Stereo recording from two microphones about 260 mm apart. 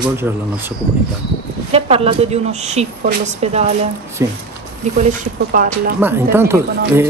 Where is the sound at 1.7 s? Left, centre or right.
Right.